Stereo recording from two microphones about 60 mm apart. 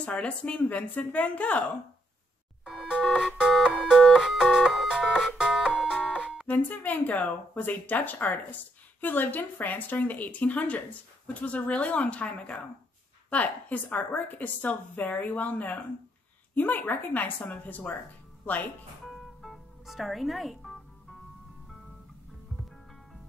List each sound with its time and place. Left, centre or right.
0.0 s speech: centre
3.0 s a sound: centre
4.2 s music: centre
6.4 s speech: left
19.0 s music: centre